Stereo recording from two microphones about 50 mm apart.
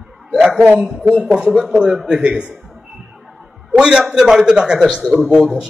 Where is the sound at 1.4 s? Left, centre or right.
Centre.